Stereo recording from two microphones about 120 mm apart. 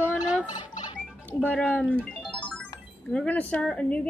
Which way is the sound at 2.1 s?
5° left (ahead or behind).